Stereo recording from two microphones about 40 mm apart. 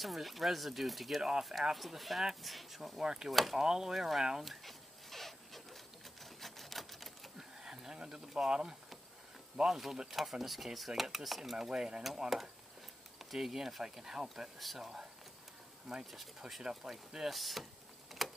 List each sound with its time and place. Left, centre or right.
0.0 s speech: centre
3.0 s speech: centre
3.3 s speech: centre
3.5 s speech: centre
4.4 s dog: centre
6.4 s typewriter: centre
7.3 s a sound: centre
8.5 s speech: centre
10.1 s speech: centre
13.2 s speech: centre
14.6 s speech: centre
15.9 s speech: centre
18.2 s a sound: centre